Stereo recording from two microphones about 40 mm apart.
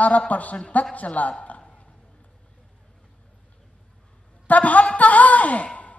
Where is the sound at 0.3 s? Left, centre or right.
Left.